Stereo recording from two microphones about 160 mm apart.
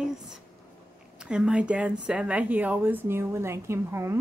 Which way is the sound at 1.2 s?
5° right (ahead or behind).